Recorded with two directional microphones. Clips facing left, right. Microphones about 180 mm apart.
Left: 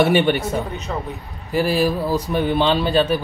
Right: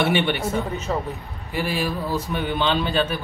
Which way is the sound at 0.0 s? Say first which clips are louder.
Left 5 dB; 45° left (ahead or behind).